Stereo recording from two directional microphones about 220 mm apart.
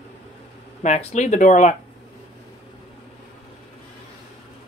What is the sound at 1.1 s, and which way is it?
Speech, 30° left (ahead or behind).